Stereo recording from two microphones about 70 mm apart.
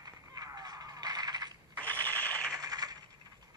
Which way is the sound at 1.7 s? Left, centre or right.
Left.